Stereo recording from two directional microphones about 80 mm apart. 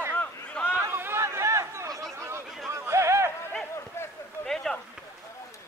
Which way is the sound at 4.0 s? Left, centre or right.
Left.